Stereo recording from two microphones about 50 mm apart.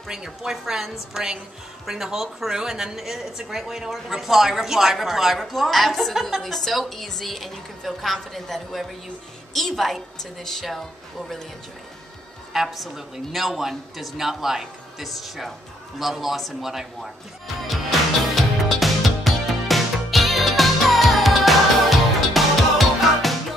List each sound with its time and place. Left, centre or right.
0.1 s a woman's voice: centre
12.5 s a woman's voice: centre
18.3 s music: centre